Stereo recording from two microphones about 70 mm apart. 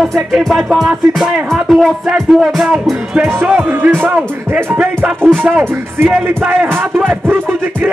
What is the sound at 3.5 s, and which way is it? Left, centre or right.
Music, right.